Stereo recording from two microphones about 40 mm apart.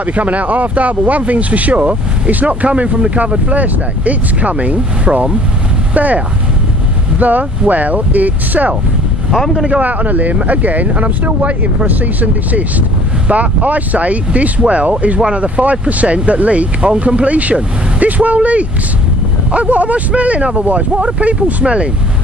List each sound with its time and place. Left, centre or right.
0.0 s speech: right
9.8 s speech: right
15.1 s speech: right
15.4 s speech: right